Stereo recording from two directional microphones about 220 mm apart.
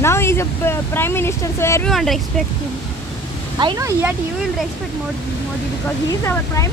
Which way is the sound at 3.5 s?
15° right (ahead or behind).